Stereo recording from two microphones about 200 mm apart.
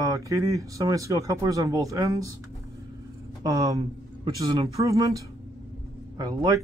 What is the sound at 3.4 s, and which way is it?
Speech, 15° right (ahead or behind).